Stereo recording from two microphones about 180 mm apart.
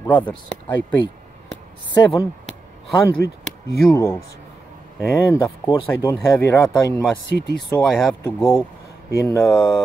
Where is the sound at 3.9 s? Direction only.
15° left (ahead or behind).